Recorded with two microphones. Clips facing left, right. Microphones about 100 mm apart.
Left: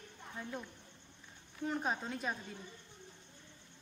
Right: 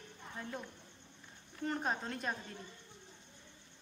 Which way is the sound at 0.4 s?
Centre (ahead or behind).